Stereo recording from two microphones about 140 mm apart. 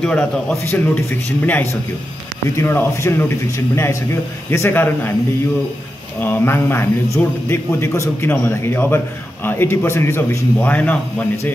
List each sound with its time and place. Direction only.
0.0 s a man's voice: 5° left (ahead or behind)
6.1 s a man's voice: 15° left (ahead or behind)